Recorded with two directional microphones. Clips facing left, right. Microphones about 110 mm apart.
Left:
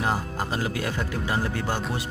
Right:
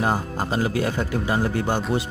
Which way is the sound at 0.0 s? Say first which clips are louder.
Right 3 dB; 30° right (ahead or behind).